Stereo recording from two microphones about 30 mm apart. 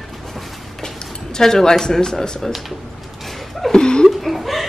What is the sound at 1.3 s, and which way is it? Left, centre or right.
Speech, left.